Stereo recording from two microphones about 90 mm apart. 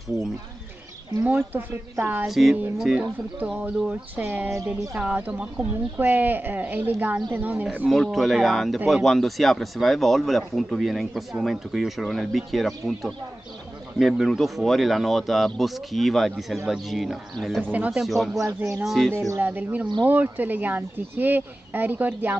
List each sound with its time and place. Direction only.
1.2 s speech: 20° right (ahead or behind)
2.2 s speech: centre (ahead or behind); by 7.6 s 20° right (ahead or behind)
7.9 s speech: centre (ahead or behind)
17.6 s speech: 15° right (ahead or behind)
18.0 s speech: centre (ahead or behind)
19.1 s speech: 30° right (ahead or behind)
19.4 s speech: 15° right (ahead or behind)